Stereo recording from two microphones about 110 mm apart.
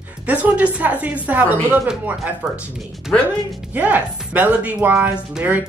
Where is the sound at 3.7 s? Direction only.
15° right (ahead or behind).